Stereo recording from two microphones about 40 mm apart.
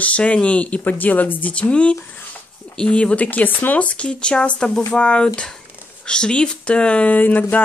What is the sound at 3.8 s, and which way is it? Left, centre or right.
Speech, left.